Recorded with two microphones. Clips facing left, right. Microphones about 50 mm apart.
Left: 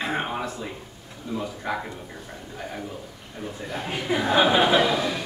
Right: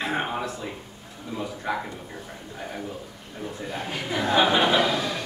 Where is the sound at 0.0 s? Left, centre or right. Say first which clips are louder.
Even; centre.